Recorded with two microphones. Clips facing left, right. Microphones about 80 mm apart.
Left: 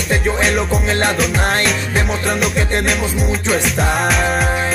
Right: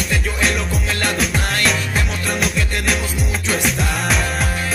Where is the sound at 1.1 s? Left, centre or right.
Centre.